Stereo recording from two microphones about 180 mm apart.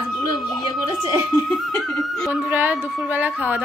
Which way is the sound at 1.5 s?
Centre (ahead or behind).